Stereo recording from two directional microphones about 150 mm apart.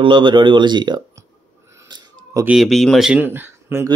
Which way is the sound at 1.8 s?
30° right (ahead or behind).